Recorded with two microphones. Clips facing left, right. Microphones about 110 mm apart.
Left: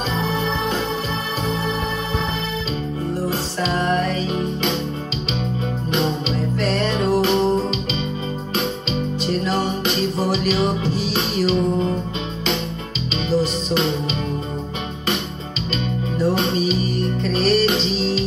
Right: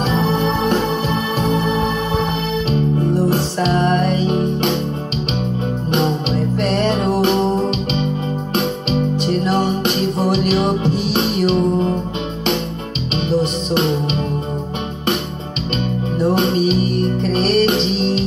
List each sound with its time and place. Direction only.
3.3 s music: 65° right (ahead or behind)
9.6 s music: 60° right (ahead or behind)
13.3 s music: 60° right (ahead or behind)
16.2 s music: 65° right (ahead or behind)